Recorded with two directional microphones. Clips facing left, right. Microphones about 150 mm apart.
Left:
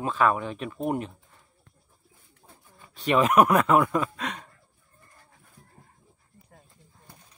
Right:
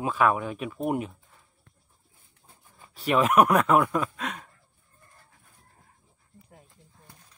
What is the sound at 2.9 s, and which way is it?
Speech, centre (ahead or behind).